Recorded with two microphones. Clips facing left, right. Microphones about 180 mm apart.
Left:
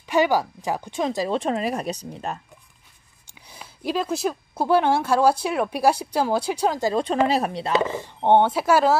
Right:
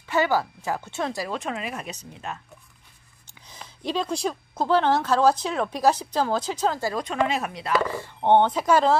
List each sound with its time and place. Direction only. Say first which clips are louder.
0.0 s speech: left 3 dB; 15° left (ahead or behind); by 2.4 s 35° left (ahead or behind)
3.3 s speech: left 1 dB; 10° left (ahead or behind)